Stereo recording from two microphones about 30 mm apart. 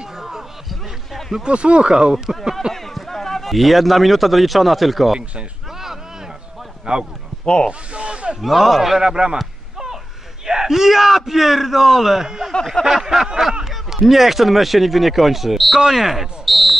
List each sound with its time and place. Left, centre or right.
0.0 s a sound: centre
1.4 s speech: right
2.7 s a sound: centre
3.5 s speech: centre
6.9 s a man's voice: right
7.4 s speech: left
7.9 s a sound: right
8.4 s a man's voice: centre
9.0 s a man's voice: right
10.4 s a man's voice: centre
15.8 s a man's voice: centre